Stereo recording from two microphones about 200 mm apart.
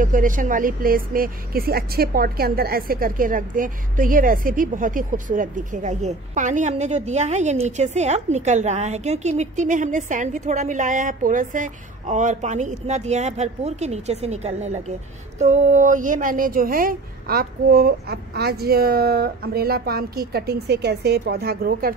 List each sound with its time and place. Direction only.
0.0 s a woman's voice: 40° right (ahead or behind)